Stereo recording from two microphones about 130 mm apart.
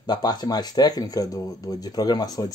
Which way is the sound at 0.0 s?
30° left (ahead or behind).